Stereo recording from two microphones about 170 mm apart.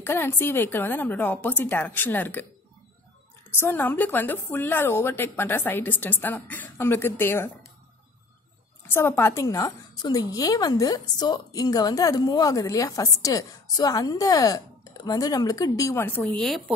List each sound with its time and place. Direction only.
0.0 s a woman's voice: 15° left (ahead or behind)
3.5 s a woman's voice: 15° left (ahead or behind)
8.9 s a woman's voice: 15° left (ahead or behind)